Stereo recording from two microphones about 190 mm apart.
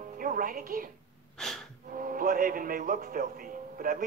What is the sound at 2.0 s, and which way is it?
Vehicle, 45° right (ahead or behind).